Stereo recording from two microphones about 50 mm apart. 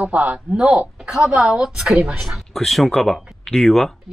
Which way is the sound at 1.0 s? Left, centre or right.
Centre.